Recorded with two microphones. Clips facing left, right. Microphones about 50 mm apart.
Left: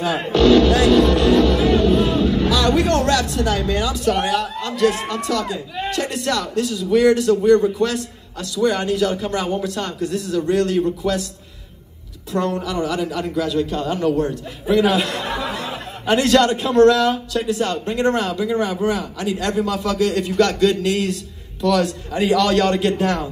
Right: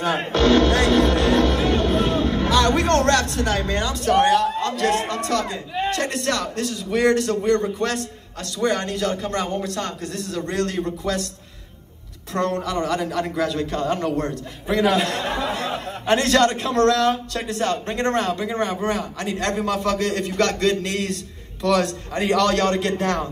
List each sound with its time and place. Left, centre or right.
0.0 s a man's voice: right
12.3 s a man's voice: right